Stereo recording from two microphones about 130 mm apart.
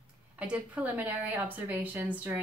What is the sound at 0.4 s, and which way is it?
A woman's voice, 10° right (ahead or behind).